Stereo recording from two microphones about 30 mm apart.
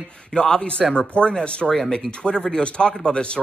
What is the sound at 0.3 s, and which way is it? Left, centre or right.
Speech, left.